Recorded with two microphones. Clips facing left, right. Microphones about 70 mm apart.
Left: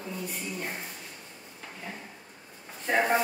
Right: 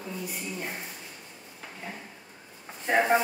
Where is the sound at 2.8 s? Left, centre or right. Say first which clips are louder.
Right 2 dB; centre.